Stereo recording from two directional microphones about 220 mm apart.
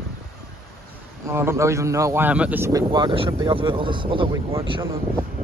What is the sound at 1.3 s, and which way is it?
Speech, 10° right (ahead or behind).